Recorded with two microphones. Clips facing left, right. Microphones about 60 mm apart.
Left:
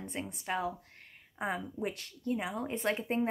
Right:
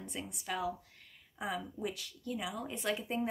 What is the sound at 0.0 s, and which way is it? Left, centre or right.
Speech, left.